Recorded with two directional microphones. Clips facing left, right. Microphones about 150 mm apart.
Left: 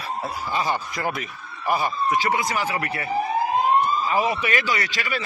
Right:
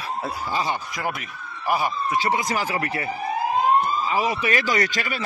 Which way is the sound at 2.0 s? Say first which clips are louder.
Left 1 dB; 35° right (ahead or behind).